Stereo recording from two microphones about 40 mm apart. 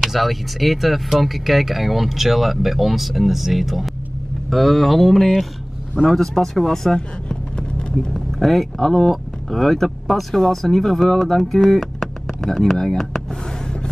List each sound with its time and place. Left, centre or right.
0.0 s speech: centre
7.0 s vehicle: left
8.1 s speech: centre